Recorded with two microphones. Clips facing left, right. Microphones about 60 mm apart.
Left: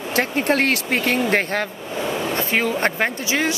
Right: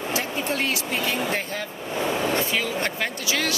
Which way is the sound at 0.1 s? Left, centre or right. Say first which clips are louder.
Left 9 dB; left.